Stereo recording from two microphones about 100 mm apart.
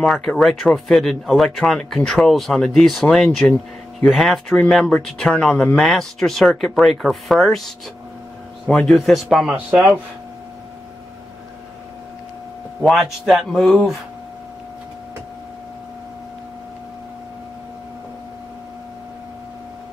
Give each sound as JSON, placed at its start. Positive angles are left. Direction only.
{"t": 0.0, "sound": "speech", "side_deg": 5}
{"t": 3.3, "sound": "speech", "side_deg": 15}
{"t": 4.1, "sound": "speech", "side_deg": 5}
{"t": 8.6, "sound": "speech", "side_deg": 5}
{"t": 12.8, "sound": "speech", "side_deg": 0}